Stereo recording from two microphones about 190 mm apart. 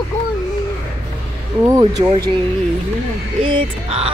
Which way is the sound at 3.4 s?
30° right (ahead or behind).